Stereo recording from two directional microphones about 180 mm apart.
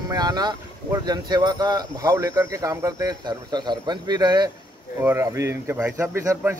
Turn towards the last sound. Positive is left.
turn(degrees=-15)  # may be behind; listen again after turning